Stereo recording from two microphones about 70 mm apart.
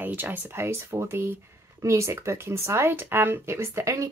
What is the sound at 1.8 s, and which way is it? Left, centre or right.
Speech, right.